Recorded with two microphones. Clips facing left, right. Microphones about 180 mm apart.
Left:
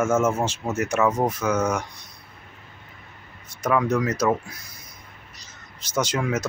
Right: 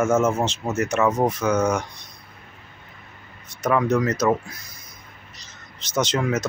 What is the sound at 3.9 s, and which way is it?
Speech, 10° left (ahead or behind).